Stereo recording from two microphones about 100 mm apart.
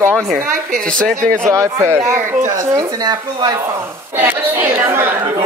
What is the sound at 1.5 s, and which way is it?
A woman's voice, 30° right (ahead or behind).